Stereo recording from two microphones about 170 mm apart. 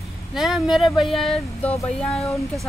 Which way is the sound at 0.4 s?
Centre (ahead or behind).